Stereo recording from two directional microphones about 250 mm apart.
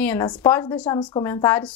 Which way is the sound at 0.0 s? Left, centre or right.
Centre.